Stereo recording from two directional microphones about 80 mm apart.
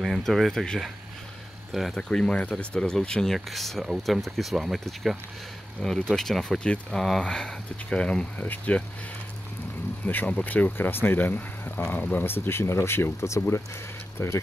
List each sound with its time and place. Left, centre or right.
0.0 s speech: centre
2.0 s speech: centre
10.0 s speech: left